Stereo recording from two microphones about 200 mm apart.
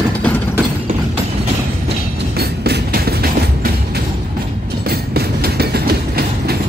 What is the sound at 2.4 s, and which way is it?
Train, 50° right (ahead or behind).